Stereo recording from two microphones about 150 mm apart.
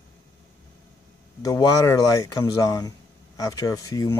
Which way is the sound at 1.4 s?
25° left (ahead or behind).